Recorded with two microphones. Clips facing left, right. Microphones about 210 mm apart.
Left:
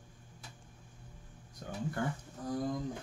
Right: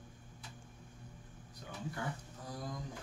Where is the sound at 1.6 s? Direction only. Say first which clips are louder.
Left 6 dB; 50° left (ahead or behind).